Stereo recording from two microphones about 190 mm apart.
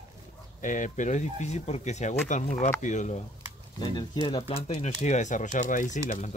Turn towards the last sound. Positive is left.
turn(degrees=40)  # may be behind; listen again after turning